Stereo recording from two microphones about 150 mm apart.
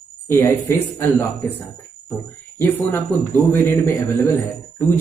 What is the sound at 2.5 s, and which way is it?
Speech, 15° left (ahead or behind).